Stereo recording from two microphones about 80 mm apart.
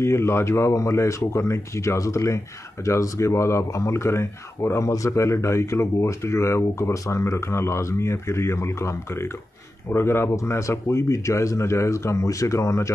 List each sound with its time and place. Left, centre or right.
0.0 s speech: left